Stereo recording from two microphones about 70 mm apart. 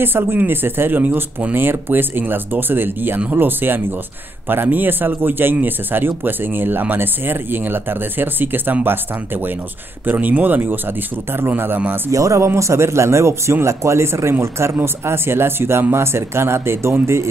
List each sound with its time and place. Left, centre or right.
0.0 s speech: right
12.1 s speech: right